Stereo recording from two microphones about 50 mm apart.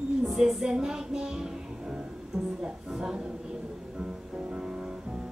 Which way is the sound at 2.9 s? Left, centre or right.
Centre.